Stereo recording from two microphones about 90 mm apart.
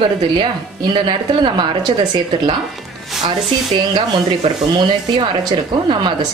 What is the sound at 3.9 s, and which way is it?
A woman's voice, 65° right (ahead or behind).